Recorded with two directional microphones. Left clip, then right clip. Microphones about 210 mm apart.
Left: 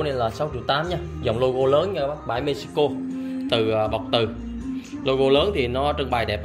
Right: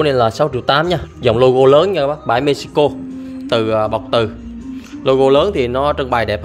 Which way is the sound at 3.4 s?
35° right (ahead or behind).